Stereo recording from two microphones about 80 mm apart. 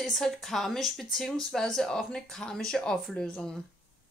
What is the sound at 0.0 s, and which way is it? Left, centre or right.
Speech, centre.